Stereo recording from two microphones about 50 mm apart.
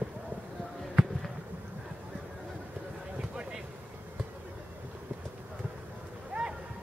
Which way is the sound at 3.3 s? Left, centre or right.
Centre.